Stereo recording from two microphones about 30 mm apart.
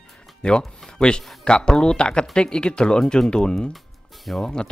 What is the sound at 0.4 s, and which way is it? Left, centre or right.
Speech, left.